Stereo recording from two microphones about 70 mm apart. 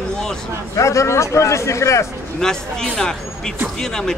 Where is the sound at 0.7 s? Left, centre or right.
Left.